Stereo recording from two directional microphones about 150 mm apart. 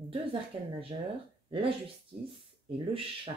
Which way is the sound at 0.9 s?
40° right (ahead or behind).